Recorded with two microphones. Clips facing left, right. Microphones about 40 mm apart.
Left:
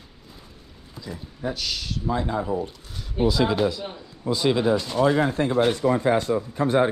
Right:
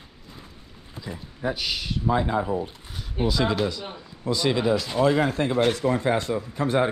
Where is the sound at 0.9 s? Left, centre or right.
Centre.